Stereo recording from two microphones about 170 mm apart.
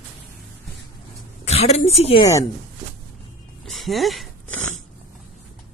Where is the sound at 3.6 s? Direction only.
Centre (ahead or behind).